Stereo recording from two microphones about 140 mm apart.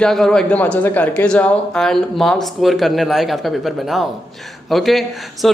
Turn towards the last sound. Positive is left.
turn(degrees=0)  # may be behind; listen again after turning